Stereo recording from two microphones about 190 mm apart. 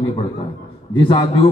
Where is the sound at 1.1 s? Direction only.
25° left (ahead or behind).